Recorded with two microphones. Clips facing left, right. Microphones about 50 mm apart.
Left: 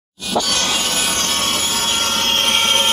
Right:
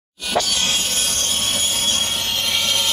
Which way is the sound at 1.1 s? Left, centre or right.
Left.